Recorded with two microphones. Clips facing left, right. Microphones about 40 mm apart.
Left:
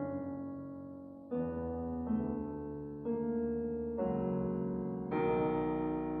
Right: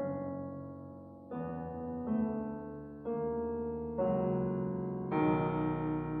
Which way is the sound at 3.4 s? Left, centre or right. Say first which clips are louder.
Left 1 dB; centre.